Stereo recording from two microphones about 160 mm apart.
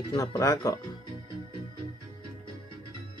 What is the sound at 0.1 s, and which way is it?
Speech, 20° left (ahead or behind).